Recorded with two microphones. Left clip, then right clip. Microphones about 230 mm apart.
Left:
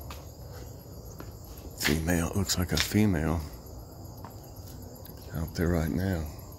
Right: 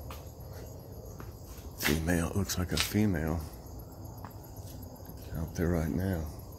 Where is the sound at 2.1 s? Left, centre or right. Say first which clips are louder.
Left 3 dB; centre.